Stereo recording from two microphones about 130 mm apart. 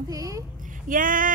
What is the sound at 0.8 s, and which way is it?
Speech, 90° right.